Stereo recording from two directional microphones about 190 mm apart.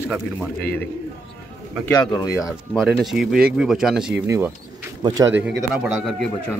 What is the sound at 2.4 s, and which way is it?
Speech, centre (ahead or behind).